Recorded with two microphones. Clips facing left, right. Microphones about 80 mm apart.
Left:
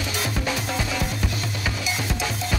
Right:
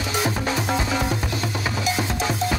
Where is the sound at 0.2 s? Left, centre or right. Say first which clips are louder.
Right 4 dB; right.